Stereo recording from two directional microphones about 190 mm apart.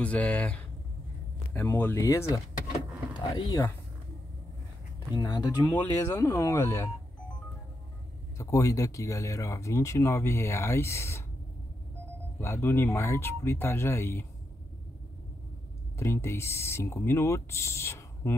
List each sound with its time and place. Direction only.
0.0 s speech: 5° left (ahead or behind)
5.1 s speech: 20° left (ahead or behind)
8.4 s speech: 15° left (ahead or behind)
12.4 s speech: 15° left (ahead or behind)
16.0 s speech: 15° left (ahead or behind)